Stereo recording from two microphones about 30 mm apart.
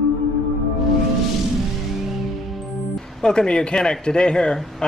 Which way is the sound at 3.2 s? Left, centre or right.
Left.